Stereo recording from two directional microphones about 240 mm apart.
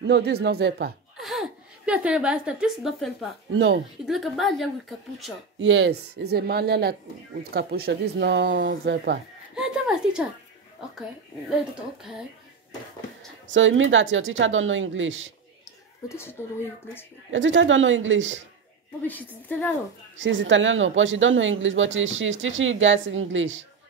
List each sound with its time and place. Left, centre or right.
0.0 s speech: right
1.2 s a woman's voice: centre
3.5 s speech: right
4.0 s speech: centre
5.6 s speech: right
9.6 s a woman's voice: centre
13.5 s speech: right
16.1 s a woman's voice: centre
17.3 s speech: right
19.0 s a woman's voice: centre
20.2 s speech: right